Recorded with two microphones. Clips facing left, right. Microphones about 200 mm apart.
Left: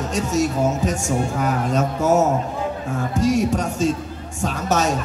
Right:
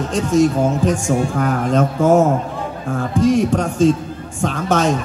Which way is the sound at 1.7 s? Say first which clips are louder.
Right 5 dB; 55° right (ahead or behind).